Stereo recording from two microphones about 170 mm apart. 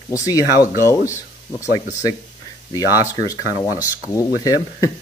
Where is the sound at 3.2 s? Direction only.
20° left (ahead or behind).